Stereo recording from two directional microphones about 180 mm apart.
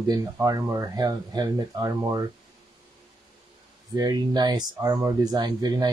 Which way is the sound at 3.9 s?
20° right (ahead or behind).